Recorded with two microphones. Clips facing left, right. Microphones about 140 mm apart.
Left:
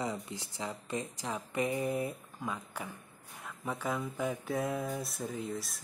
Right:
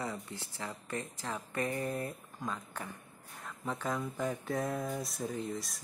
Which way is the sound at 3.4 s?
5° left (ahead or behind).